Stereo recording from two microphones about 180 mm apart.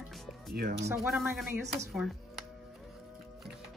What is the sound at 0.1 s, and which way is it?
Music, centre (ahead or behind).